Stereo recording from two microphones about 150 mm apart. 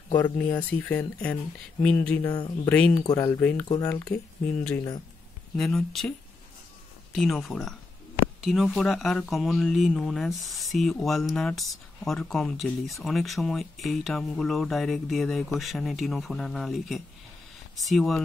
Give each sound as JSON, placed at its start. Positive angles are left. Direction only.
{"t": 0.2, "sound": "speech", "side_deg": 10}
{"t": 3.6, "sound": "speech", "side_deg": 30}
{"t": 5.6, "sound": "speech", "side_deg": 5}